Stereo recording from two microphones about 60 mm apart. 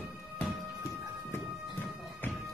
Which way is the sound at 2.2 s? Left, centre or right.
Left.